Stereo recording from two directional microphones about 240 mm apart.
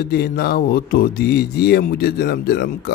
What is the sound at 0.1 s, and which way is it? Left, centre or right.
A man's voice, left.